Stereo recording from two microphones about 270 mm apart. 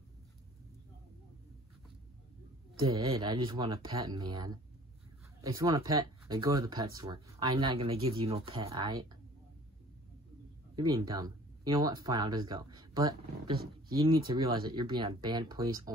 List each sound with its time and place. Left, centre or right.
2.8 s speech: centre
10.8 s speech: centre